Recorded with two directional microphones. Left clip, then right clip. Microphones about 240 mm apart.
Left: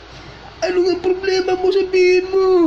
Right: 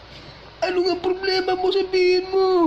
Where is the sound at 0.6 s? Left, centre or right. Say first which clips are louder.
Left 4 dB; right.